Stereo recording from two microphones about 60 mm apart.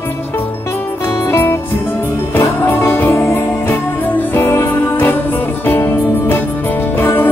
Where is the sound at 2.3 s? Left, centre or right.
Left.